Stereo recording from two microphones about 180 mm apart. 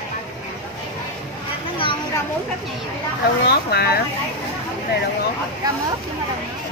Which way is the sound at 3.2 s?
65° left (ahead or behind).